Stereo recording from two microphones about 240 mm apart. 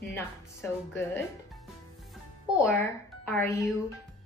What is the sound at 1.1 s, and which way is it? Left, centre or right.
Music, centre.